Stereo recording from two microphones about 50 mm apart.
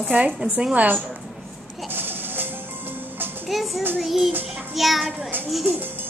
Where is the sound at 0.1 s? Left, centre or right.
Centre.